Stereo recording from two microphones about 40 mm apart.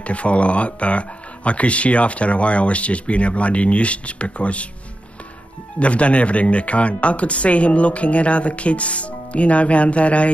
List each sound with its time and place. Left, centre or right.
0.0 s speech: left
5.8 s speech: left